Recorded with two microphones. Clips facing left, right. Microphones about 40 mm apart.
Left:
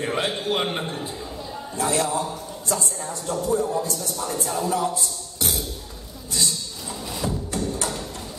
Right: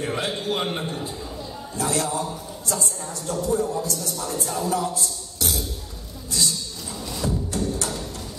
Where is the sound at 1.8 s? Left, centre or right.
Left.